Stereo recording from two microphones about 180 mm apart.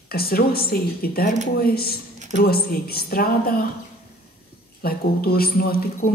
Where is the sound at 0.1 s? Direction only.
60° left (ahead or behind).